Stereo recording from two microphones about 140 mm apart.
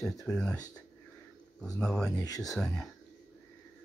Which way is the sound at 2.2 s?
25° left (ahead or behind).